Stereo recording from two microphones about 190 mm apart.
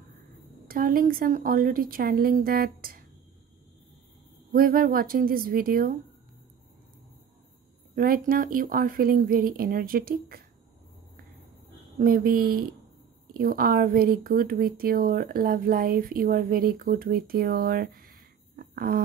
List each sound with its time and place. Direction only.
0.7 s speech: 50° right (ahead or behind)
4.5 s speech: 50° right (ahead or behind)
7.9 s speech: 50° right (ahead or behind)
12.0 s speech: 50° right (ahead or behind)